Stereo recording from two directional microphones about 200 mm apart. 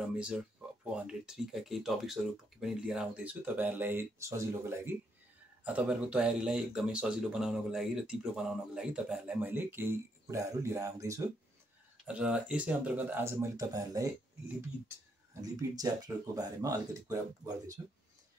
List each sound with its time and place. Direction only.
0.9 s speech: 5° right (ahead or behind)
12.1 s speech: 5° right (ahead or behind)
15.4 s speech: 20° right (ahead or behind)